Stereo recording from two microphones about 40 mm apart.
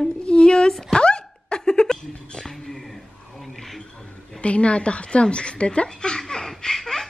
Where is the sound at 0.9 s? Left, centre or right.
Left.